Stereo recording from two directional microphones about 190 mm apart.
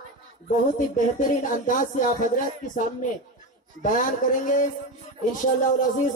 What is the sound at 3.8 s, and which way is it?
Speech, 45° left (ahead or behind).